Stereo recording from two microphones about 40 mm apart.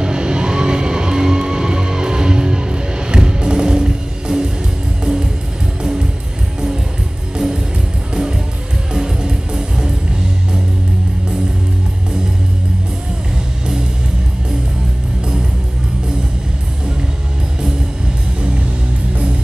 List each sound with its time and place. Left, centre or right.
0.0 s music: right
7.3 s music: centre